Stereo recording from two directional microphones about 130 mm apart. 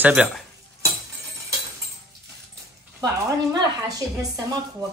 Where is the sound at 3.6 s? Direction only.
30° right (ahead or behind).